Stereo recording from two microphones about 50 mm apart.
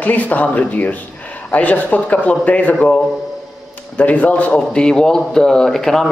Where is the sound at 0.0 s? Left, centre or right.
Left.